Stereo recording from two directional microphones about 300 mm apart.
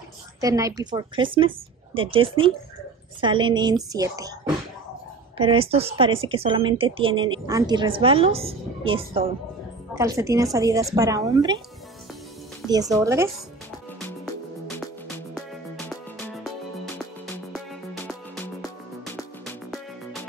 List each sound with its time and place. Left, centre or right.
0.4 s a woman's voice: centre
5.4 s a woman's voice: centre
12.6 s a woman's voice: centre
13.9 s music: centre